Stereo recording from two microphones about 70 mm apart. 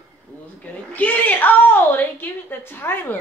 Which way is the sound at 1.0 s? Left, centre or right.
Left.